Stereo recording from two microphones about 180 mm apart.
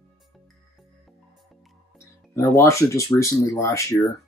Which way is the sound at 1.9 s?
15° left (ahead or behind).